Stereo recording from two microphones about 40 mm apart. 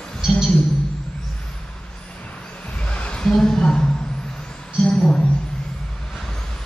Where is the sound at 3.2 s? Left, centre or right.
Centre.